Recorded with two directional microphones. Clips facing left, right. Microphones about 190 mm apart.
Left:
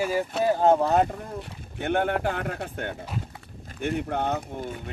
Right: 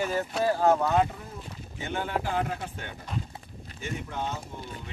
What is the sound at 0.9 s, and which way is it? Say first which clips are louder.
Speech: left 2 dB; 55° left (ahead or behind).